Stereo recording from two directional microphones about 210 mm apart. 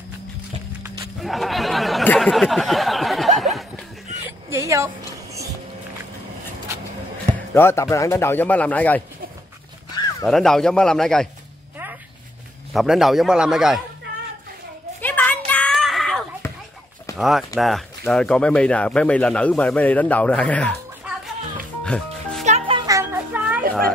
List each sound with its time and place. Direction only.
1.2 s a sound: centre (ahead or behind)
4.5 s music: 15° right (ahead or behind)
7.5 s a man's voice: 10° left (ahead or behind)
10.2 s speech: centre (ahead or behind)
12.7 s speech: centre (ahead or behind)
15.0 s a sound: 10° left (ahead or behind)
17.2 s speech: centre (ahead or behind)
21.0 s music: 5° right (ahead or behind)
22.4 s music: 30° right (ahead or behind)
22.8 s children playing: 15° right (ahead or behind)